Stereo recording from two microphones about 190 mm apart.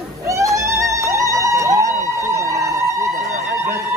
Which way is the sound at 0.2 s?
15° right (ahead or behind).